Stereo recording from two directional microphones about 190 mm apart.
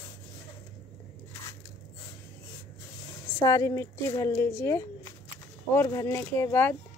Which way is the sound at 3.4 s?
15° left (ahead or behind).